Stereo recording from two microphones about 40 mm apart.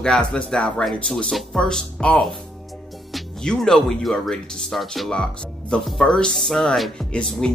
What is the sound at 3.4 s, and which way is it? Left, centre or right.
Speech, centre.